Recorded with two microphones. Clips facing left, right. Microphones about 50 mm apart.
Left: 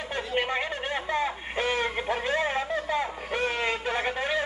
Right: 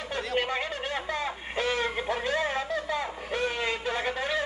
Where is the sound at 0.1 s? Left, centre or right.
Left.